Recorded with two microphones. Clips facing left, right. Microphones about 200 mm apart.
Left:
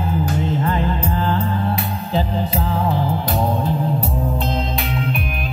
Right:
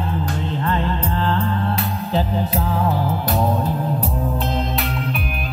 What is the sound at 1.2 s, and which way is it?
Music, 25° left (ahead or behind).